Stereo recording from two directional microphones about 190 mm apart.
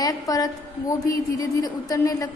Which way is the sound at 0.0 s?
20° left (ahead or behind).